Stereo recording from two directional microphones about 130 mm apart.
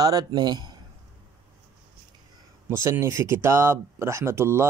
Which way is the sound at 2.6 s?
20° right (ahead or behind).